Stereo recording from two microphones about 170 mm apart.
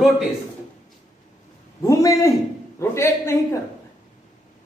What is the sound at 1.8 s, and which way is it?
A man's voice, 20° left (ahead or behind).